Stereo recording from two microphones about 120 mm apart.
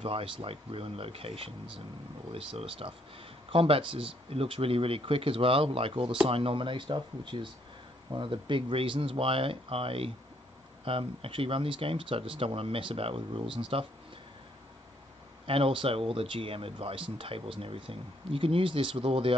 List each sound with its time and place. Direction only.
0.0 s speech: 50° right (ahead or behind)
15.4 s speech: 50° right (ahead or behind)